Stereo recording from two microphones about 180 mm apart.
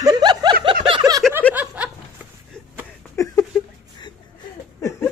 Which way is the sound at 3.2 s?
15° left (ahead or behind).